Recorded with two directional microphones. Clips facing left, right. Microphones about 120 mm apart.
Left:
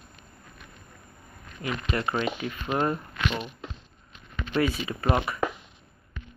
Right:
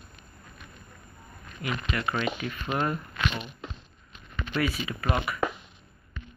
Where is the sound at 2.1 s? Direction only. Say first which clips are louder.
Left 1 dB; 20° left (ahead or behind).